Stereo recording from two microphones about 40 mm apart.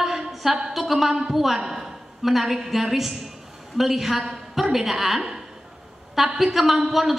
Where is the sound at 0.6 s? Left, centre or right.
Centre.